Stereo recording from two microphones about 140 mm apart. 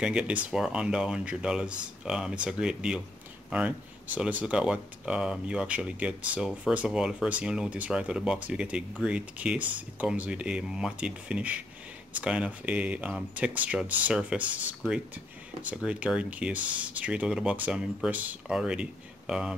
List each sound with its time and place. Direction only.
0.0 s speech: 5° right (ahead or behind)
15.7 s speech: 5° right (ahead or behind)